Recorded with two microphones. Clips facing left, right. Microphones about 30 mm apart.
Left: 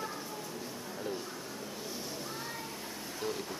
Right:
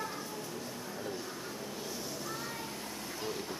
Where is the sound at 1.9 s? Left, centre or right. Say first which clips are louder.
Even; centre.